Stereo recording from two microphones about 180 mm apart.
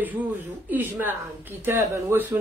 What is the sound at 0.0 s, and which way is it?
Speech, 10° right (ahead or behind).